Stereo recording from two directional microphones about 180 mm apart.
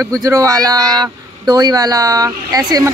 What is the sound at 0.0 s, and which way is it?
Speech, 20° right (ahead or behind).